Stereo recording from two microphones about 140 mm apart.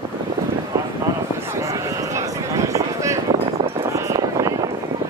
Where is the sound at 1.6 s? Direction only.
20° right (ahead or behind).